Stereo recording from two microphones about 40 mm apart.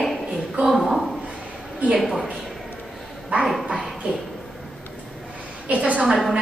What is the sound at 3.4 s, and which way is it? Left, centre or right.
Dog, centre.